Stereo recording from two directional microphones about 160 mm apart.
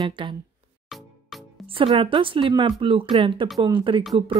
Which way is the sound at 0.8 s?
Centre (ahead or behind).